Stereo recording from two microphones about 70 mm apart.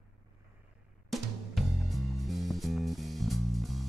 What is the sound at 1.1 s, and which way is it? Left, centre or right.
Music, centre.